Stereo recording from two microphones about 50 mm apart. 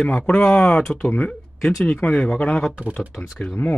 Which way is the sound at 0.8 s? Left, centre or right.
Centre.